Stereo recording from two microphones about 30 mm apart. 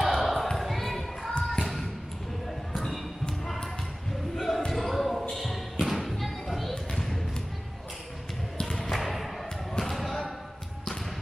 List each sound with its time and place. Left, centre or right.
0.0 s a sound: centre
1.4 s thump: centre
3.4 s a sound: centre
5.4 s thump: centre
8.5 s thump: left
8.9 s thump: centre
9.7 s basketball bounce: centre